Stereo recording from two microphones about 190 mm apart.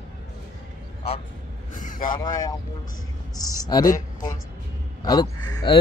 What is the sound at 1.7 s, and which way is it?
Vehicle, 45° left (ahead or behind).